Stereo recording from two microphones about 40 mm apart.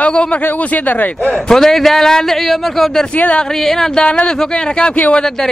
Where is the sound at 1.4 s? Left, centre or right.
Centre.